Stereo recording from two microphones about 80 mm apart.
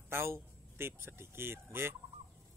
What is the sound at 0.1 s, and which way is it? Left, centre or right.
Speech, right.